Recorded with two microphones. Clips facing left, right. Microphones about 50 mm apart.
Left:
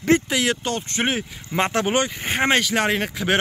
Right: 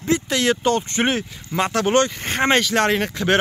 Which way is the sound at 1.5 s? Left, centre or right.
Left.